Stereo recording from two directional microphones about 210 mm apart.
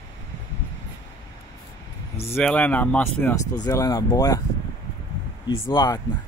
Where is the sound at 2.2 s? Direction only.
10° left (ahead or behind).